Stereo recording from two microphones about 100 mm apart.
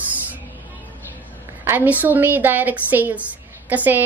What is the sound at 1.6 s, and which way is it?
A woman's voice, 20° right (ahead or behind).